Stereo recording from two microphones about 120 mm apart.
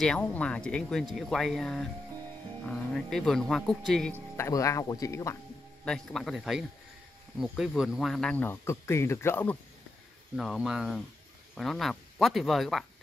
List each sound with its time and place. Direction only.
0.0 s speech: 10° left (ahead or behind)
4.4 s speech: 25° left (ahead or behind)
5.9 s speech: centre (ahead or behind); by 9.6 s 20° left (ahead or behind)
10.3 s speech: centre (ahead or behind)